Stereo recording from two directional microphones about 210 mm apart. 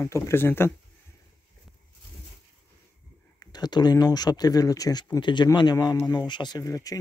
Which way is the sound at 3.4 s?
20° left (ahead or behind).